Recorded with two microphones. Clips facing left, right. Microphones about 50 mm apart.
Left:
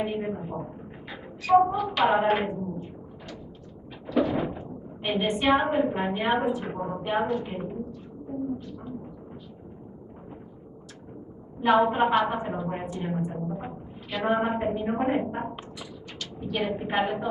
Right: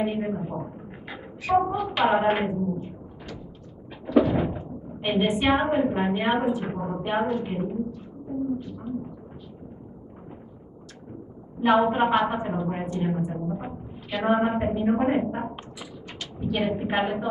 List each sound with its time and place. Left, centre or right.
0.0 s speech: centre
4.0 s speech: centre
8.5 s a sound: centre
11.6 s a woman's voice: centre